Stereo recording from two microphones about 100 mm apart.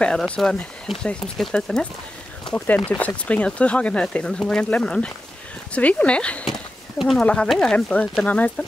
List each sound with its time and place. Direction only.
0.4 s speech: centre (ahead or behind)
2.5 s speech: 20° left (ahead or behind)